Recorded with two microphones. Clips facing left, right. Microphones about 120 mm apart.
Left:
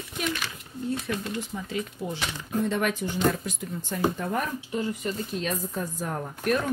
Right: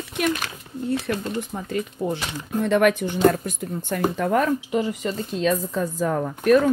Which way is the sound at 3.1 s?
50° right (ahead or behind).